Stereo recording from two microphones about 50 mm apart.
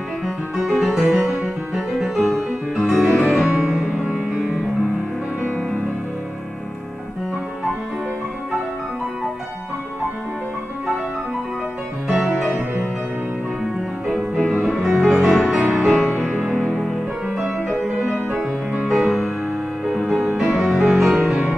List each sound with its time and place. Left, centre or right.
0.7 s music: centre
2.0 s music: centre
3.5 s music: centre
12.1 s music: centre
12.4 s music: centre
14.0 s music: centre
16.1 s music: right
17.6 s music: right
18.9 s music: centre
20.5 s music: centre